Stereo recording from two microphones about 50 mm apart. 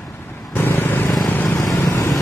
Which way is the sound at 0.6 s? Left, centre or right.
Left.